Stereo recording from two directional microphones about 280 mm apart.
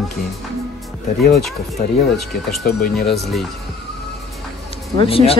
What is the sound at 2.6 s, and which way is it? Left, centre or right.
Speech, left.